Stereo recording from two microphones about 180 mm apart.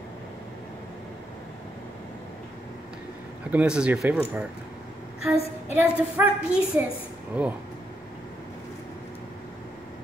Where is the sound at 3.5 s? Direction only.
5° right (ahead or behind).